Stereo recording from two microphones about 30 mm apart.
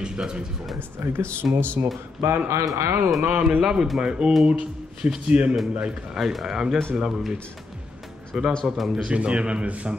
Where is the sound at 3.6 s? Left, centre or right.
Right.